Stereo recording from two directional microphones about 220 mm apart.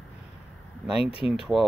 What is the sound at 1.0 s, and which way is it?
Speech, 25° left (ahead or behind).